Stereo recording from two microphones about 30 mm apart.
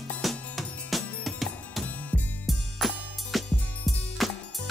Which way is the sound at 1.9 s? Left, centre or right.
Left.